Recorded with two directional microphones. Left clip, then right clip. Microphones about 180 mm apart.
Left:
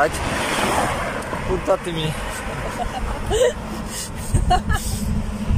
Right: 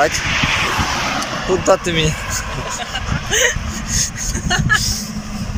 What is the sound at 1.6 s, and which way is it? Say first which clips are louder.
Speech: right 7 dB; centre (ahead or behind).